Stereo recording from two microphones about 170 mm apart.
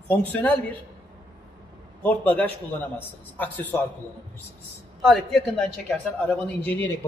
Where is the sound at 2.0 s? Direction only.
10° left (ahead or behind).